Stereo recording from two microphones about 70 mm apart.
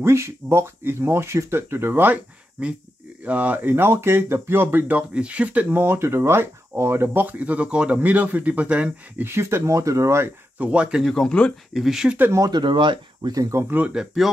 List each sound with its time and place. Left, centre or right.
0.0 s speech: right
3.3 s speech: right
5.1 s speech: centre
5.8 s speech: right; by 8.9 s centre
9.2 s speech: right
10.6 s speech: centre
11.1 s speech: centre
11.7 s speech: centre
12.4 s speech: right
13.7 s speech: right
13.9 s speech: centre